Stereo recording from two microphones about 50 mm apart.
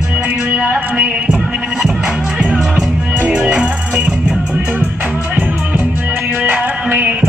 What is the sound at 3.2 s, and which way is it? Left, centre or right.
Music, centre.